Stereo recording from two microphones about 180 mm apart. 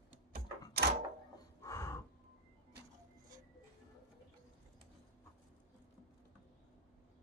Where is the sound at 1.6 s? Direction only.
15° left (ahead or behind).